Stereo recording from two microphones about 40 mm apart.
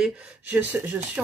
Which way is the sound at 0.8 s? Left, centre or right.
Right.